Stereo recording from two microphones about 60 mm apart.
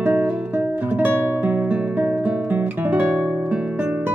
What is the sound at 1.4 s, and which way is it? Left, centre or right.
Guitar, right.